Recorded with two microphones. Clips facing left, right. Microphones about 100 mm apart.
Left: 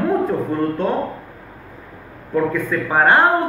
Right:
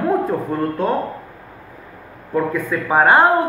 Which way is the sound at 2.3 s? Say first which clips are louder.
Left 1 dB; 10° right (ahead or behind).